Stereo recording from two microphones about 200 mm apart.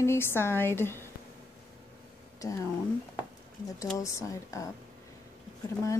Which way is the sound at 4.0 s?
15° left (ahead or behind).